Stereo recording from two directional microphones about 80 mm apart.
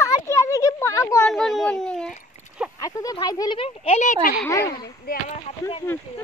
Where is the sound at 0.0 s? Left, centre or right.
Left.